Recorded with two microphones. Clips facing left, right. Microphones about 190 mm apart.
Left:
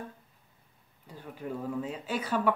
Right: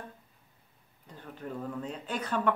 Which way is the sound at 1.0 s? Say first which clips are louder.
Left 2 dB; 10° left (ahead or behind).